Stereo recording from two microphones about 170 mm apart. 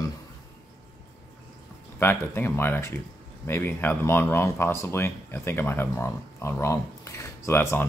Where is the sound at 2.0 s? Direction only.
15° left (ahead or behind).